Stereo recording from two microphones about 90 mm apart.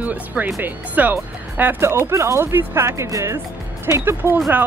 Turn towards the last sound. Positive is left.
turn(degrees=-25)  # may be behind; listen again after turning